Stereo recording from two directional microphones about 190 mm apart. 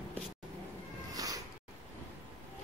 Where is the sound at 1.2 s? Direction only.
20° right (ahead or behind).